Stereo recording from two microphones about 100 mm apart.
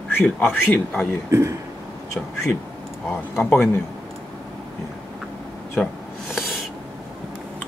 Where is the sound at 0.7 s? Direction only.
10° left (ahead or behind).